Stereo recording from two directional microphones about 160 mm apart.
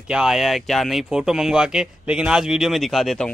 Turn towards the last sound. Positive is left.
turn(degrees=5)  # may be behind; listen again after turning